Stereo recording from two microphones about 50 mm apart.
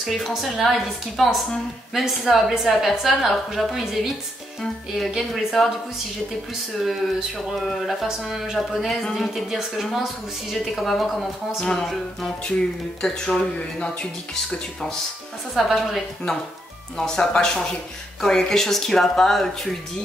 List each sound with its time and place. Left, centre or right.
0.0 s a woman's voice: centre
6.8 s a woman's voice: centre
10.5 s a woman's voice: centre
15.5 s a woman's voice: centre
16.9 s speech: centre